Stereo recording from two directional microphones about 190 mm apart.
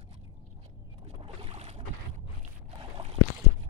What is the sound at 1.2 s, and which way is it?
Boat, 30° right (ahead or behind).